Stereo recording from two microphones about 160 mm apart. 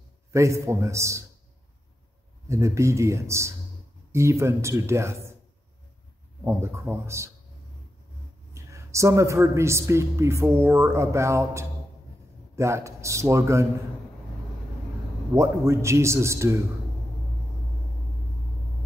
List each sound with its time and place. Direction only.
0.3 s a man's voice: 20° right (ahead or behind)
2.4 s speech: 20° right (ahead or behind)
6.4 s speech: 15° right (ahead or behind)
8.5 s speech: 20° right (ahead or behind)
15.3 s speech: 20° right (ahead or behind)